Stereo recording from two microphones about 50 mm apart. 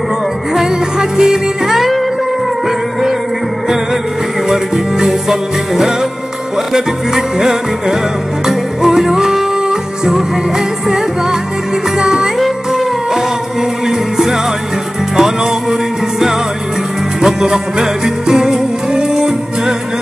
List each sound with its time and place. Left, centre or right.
0.6 s music: centre
4.5 s music: centre
12.0 s music: centre
17.2 s music: centre